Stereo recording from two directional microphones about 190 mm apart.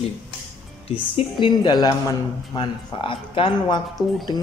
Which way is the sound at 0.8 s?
30° left (ahead or behind).